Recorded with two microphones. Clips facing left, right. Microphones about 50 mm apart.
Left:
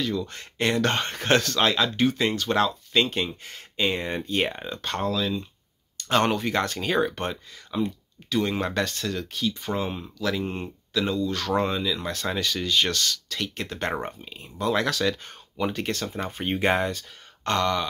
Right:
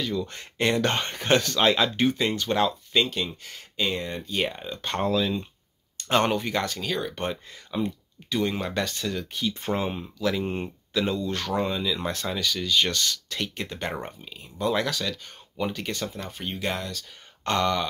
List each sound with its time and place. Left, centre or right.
0.0 s speech: centre
4.9 s speech: centre
6.8 s speech: left
7.2 s speech: centre
9.5 s speech: right
9.8 s speech: centre
11.5 s speech: centre
13.0 s speech: centre
13.9 s speech: centre
14.7 s speech: centre
16.4 s speech: left
17.5 s speech: centre